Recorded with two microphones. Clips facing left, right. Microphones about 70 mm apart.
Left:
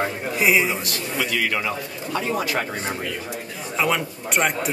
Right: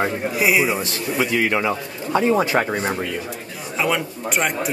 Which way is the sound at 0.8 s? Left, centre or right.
Right.